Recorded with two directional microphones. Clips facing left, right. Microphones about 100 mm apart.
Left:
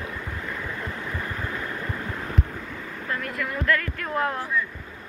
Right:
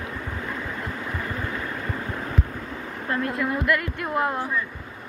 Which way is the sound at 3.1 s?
25° right (ahead or behind).